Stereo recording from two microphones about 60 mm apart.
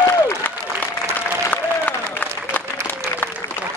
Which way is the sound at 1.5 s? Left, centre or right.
Left.